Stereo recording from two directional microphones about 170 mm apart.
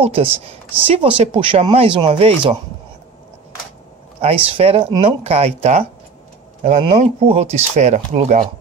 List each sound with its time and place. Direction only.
0.0 s speech: 35° right (ahead or behind)
4.2 s speech: 35° right (ahead or behind)